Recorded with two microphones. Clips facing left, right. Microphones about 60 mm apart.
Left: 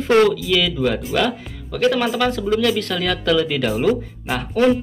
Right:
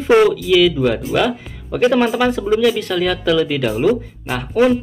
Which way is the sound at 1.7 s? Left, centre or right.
Centre.